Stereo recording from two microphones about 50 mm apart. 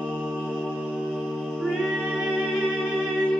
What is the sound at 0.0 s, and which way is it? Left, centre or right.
Music, centre.